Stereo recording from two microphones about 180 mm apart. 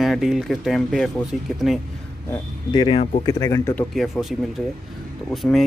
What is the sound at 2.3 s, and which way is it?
Speech, 25° left (ahead or behind).